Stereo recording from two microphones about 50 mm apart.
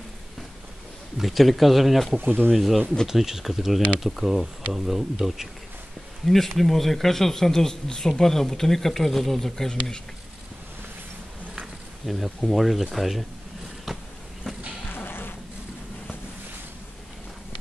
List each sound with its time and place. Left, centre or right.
1.1 s speech: centre
2.2 s speech: right
2.5 s speech: centre
6.2 s speech: centre
12.1 s speech: centre
13.9 s a sound: centre
14.9 s a sound: left